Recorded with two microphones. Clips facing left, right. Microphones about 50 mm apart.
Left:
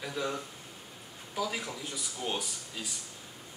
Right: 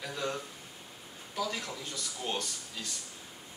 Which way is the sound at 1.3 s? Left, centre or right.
Centre.